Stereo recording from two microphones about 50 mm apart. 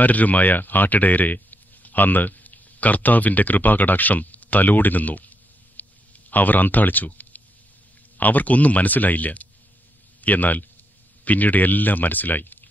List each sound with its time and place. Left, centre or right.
0.0 s speech: left
5.8 s a sound: left
6.3 s speech: left